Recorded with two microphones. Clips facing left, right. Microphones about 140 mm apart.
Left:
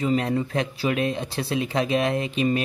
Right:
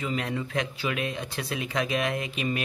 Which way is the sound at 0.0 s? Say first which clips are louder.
Left 7 dB; 35° left (ahead or behind).